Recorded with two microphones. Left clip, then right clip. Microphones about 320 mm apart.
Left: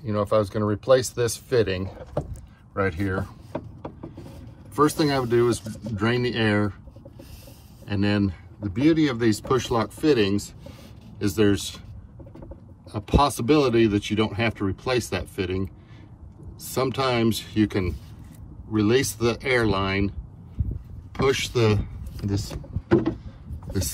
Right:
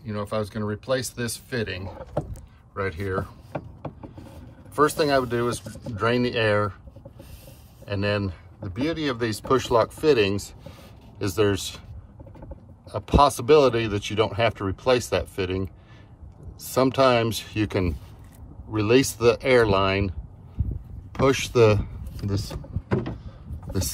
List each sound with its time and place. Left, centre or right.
0.0 s speech: centre
4.8 s speech: centre
7.8 s speech: centre
12.9 s speech: centre
23.2 s vehicle: centre